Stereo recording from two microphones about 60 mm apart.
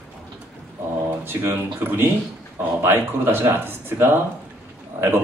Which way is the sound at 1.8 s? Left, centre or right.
Right.